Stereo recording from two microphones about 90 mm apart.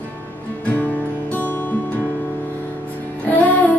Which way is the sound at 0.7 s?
20° left (ahead or behind).